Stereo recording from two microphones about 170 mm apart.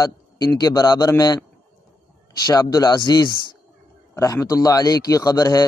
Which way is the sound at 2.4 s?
20° left (ahead or behind).